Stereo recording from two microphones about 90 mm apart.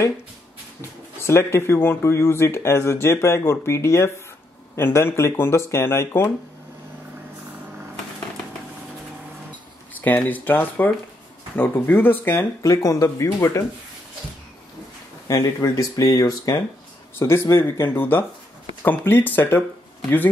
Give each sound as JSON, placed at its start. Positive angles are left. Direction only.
{"t": 0.7, "sound": "speech", "side_deg": 30}
{"t": 10.0, "sound": "speech", "side_deg": 20}
{"t": 12.6, "sound": "speech", "side_deg": 40}
{"t": 15.2, "sound": "speech", "side_deg": 40}
{"t": 17.2, "sound": "speech", "side_deg": 30}